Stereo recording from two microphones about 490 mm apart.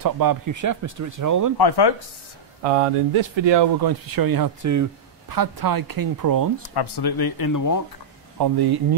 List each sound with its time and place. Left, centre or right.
0.0 s speech: right
1.6 s speech: left
2.6 s speech: right
6.6 s speech: left
8.4 s speech: right